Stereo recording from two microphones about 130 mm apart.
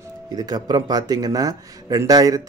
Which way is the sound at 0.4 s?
30° right (ahead or behind).